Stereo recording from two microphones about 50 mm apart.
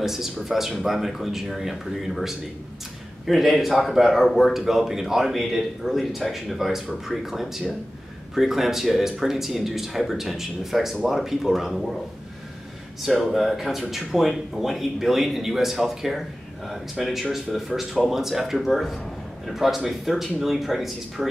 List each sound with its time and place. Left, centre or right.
0.0 s speech: centre
13.0 s speech: centre